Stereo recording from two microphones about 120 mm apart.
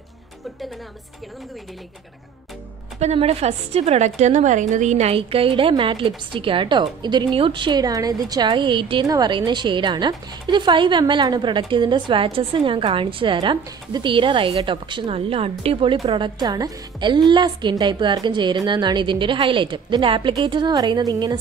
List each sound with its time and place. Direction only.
3.0 s a woman's voice: 65° right (ahead or behind); by 21.4 s 35° right (ahead or behind)